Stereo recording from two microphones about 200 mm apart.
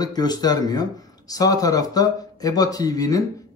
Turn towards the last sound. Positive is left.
turn(degrees=20)  # may be behind; listen again after turning